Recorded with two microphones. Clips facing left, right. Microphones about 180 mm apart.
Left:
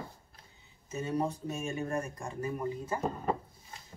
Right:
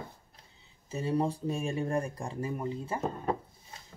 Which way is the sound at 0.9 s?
30° right (ahead or behind).